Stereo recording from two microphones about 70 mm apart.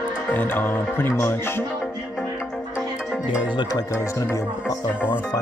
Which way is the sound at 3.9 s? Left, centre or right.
Left.